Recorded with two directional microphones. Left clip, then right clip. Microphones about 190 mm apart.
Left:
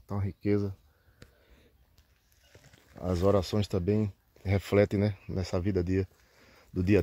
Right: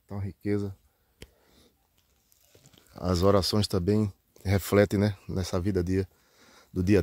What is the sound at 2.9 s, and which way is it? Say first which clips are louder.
Speech: right 3 dB; 45° right (ahead or behind).